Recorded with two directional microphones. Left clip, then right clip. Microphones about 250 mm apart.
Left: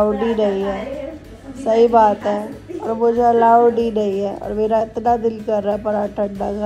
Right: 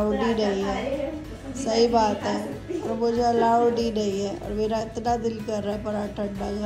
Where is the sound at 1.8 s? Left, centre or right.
Centre.